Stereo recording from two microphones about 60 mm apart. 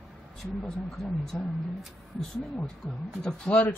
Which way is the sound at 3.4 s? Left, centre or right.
Left.